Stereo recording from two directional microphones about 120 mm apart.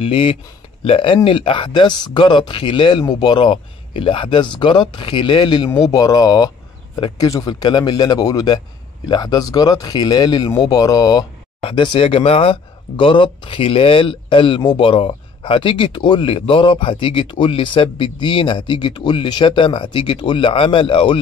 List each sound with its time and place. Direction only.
0.0 s speech: 50° left (ahead or behind)